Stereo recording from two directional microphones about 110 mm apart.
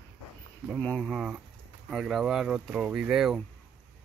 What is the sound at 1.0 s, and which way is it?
Speech, 5° right (ahead or behind).